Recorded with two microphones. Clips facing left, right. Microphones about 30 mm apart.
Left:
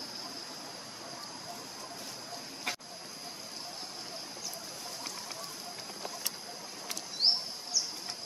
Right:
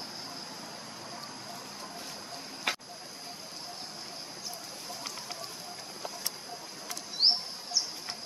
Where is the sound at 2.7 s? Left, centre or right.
Right.